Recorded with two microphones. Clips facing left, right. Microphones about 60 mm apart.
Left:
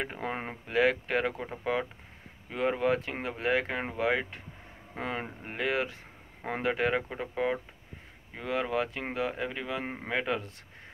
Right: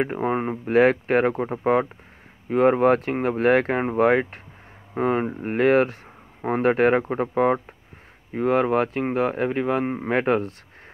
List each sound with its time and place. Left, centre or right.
0.0 s speech: right